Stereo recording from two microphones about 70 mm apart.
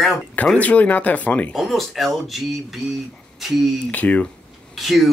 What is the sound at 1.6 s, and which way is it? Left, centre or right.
Speech, centre.